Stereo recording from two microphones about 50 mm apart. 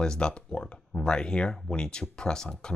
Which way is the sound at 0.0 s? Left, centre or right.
Centre.